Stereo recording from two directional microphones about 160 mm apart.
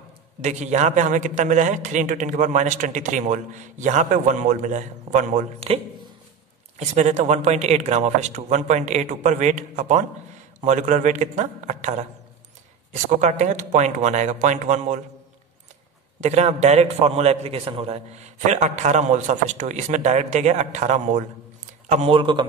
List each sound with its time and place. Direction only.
0.4 s a man's voice: 45° right (ahead or behind)
6.8 s a man's voice: 45° right (ahead or behind)
13.2 s a man's voice: 45° right (ahead or behind)
16.2 s a man's voice: 45° right (ahead or behind)